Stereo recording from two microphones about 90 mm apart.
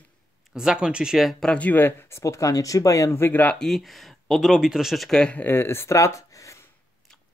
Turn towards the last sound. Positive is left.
turn(degrees=35)  # may be behind; listen again after turning